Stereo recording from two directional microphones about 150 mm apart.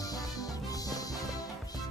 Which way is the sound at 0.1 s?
25° left (ahead or behind).